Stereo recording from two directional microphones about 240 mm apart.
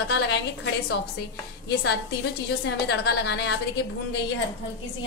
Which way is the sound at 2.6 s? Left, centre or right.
Left.